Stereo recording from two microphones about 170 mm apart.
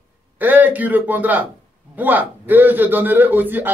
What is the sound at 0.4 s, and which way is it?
A man's voice, 10° right (ahead or behind).